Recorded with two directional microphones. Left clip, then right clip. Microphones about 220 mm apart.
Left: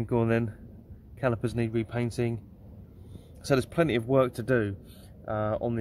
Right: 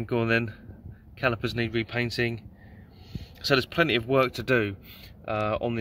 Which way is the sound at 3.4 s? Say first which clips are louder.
Right 3 dB; centre (ahead or behind).